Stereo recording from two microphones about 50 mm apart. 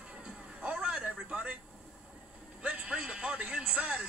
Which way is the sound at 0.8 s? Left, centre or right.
Right.